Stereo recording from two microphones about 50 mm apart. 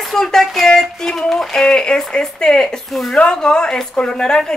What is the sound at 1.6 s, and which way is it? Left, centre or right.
Speech, centre.